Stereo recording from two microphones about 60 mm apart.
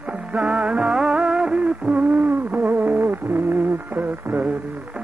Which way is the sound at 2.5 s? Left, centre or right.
Right.